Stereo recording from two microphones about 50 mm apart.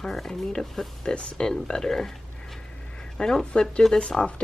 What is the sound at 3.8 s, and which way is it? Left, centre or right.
Speech, centre.